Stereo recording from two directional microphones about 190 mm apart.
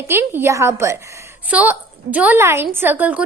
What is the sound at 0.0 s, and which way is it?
A woman's voice, 10° right (ahead or behind).